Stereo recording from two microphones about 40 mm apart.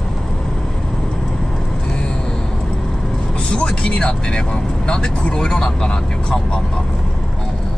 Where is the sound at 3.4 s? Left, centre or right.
Left.